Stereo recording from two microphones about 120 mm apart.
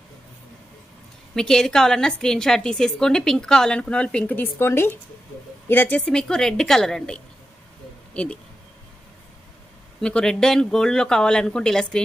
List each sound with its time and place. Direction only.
1.3 s a woman's voice: 5° left (ahead or behind)
10.0 s a woman's voice: 5° left (ahead or behind)